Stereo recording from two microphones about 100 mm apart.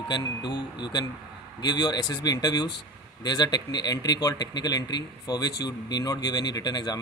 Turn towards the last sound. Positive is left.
turn(degrees=45)  # may be behind; listen again after turning